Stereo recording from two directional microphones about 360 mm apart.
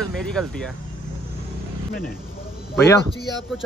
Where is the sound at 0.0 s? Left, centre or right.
Centre.